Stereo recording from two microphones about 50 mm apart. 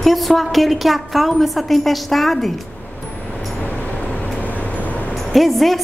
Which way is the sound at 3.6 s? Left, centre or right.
Left.